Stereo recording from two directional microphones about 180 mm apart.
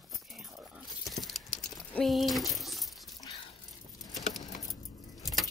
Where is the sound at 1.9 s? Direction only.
Centre (ahead or behind).